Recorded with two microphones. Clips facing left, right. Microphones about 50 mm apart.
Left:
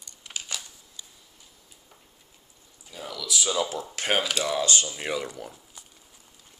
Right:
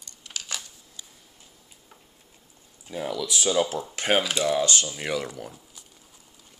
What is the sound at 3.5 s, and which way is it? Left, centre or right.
Speech, right.